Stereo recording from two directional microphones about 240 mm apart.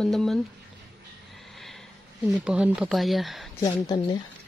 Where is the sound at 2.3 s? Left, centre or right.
Centre.